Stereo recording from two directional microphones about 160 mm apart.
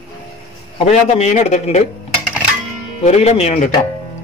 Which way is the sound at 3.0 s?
40° left (ahead or behind).